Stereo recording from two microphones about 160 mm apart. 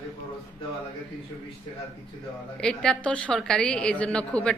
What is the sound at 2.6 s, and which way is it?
A woman's voice, 5° left (ahead or behind).